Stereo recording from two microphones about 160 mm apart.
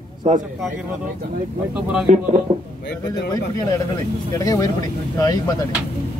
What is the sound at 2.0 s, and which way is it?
Speech, 40° right (ahead or behind).